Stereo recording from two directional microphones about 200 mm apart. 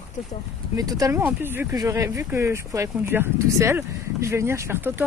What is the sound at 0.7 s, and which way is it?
Speech, 15° right (ahead or behind).